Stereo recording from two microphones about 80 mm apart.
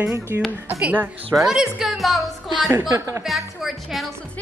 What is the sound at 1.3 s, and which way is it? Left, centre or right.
A woman's voice, centre.